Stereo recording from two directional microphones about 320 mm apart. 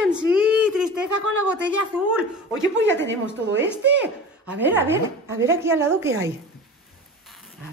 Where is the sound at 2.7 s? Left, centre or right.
Right.